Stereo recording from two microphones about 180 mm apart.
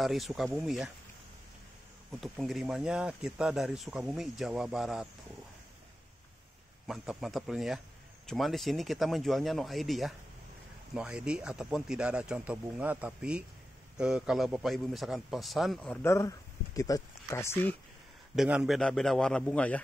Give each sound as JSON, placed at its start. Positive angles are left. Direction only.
{"t": 0.0, "sound": "a man's voice", "side_deg": 0}
{"t": 2.1, "sound": "a man's voice", "side_deg": 0}
{"t": 6.9, "sound": "a man's voice", "side_deg": 0}
{"t": 18.3, "sound": "a man's voice", "side_deg": -5}